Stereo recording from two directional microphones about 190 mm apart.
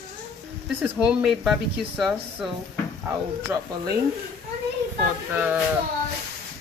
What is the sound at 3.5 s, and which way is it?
Speech, 15° right (ahead or behind).